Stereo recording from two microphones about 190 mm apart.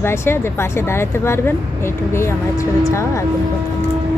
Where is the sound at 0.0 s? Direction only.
15° left (ahead or behind).